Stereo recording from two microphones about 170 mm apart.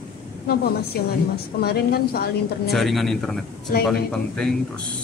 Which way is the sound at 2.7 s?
Centre (ahead or behind).